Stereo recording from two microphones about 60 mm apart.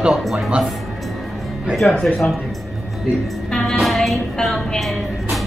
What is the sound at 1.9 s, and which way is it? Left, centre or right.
Speech, left.